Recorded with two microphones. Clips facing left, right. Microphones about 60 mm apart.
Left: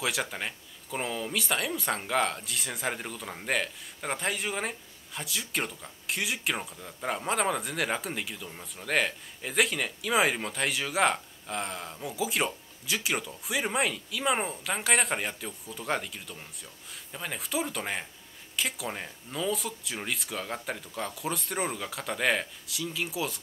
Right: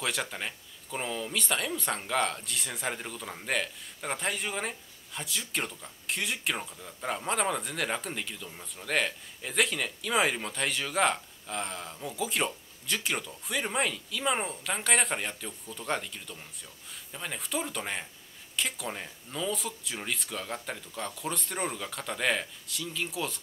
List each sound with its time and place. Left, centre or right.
0.0 s speech: centre